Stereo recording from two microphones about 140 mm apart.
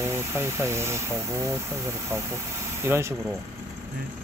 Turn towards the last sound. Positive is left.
turn(degrees=-15)  # may be behind; listen again after turning